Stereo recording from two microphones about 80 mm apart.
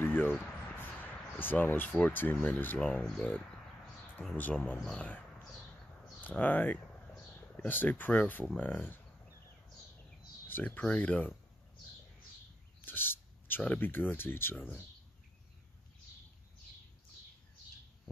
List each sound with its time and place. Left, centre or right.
0.0 s a sound: left
2.4 s speech: left
2.8 s speech: centre
4.4 s speech: centre
6.2 s speech: left
10.5 s speech: left
12.8 s bird: left
13.6 s speech: left